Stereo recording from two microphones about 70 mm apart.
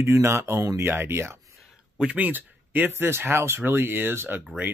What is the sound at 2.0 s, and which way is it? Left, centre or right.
Speech, right.